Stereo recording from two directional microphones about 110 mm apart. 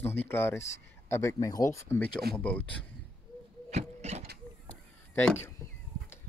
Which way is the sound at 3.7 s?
90° right.